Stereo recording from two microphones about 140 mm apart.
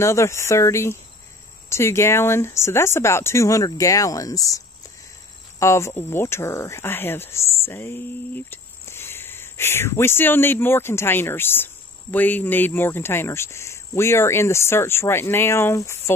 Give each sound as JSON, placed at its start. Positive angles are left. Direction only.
{"t": 0.0, "sound": "speech", "side_deg": 20}